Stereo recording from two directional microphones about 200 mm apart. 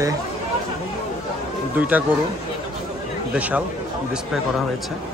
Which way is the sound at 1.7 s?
10° right (ahead or behind).